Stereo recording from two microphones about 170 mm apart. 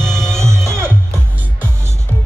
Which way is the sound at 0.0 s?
15° right (ahead or behind).